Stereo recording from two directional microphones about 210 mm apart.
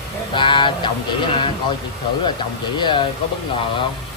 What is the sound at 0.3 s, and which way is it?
Speech, 25° left (ahead or behind).